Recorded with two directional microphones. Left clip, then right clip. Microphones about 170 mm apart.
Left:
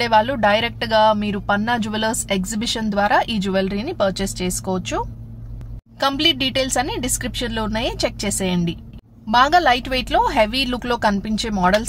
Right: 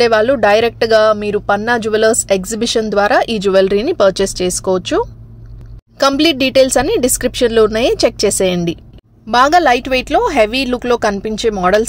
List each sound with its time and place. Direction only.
0.0 s speech: 30° right (ahead or behind)
5.9 s speech: 40° right (ahead or behind)
9.3 s speech: 25° right (ahead or behind)